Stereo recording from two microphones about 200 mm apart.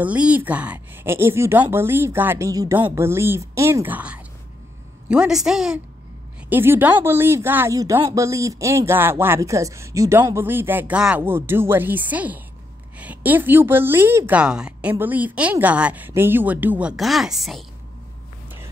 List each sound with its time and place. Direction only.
0.0 s a woman's voice: 5° right (ahead or behind)